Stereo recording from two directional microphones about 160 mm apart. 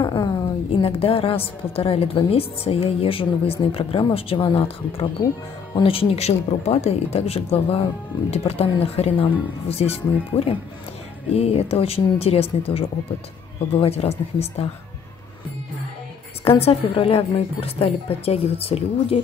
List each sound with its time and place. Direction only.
0.0 s a woman's voice: 30° left (ahead or behind)
16.4 s a woman's voice: 35° left (ahead or behind)